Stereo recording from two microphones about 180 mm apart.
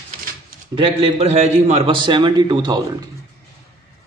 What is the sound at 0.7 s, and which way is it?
A man's voice, 30° right (ahead or behind).